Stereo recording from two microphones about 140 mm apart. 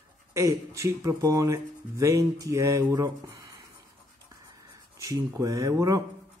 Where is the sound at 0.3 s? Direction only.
20° right (ahead or behind).